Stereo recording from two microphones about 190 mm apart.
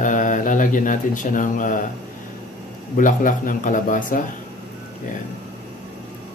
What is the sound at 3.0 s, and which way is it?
Speech, 45° left (ahead or behind).